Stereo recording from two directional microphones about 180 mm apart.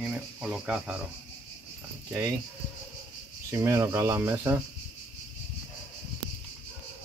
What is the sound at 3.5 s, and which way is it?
Speech, 15° right (ahead or behind).